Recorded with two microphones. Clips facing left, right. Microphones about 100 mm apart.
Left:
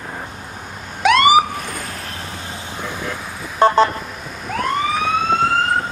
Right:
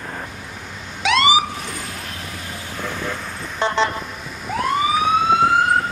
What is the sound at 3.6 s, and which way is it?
Vehicle, 45° left (ahead or behind).